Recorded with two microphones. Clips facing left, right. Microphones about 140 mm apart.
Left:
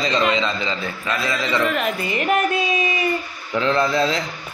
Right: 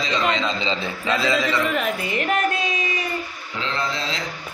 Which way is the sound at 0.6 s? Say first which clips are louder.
Right 1 dB; 25° right (ahead or behind).